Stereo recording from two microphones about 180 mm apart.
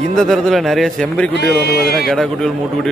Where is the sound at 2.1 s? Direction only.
5° left (ahead or behind).